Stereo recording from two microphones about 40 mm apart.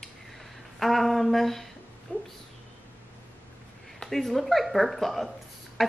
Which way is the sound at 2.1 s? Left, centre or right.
Left.